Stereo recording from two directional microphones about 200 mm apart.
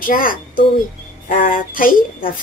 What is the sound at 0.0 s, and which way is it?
Speech, 45° left (ahead or behind).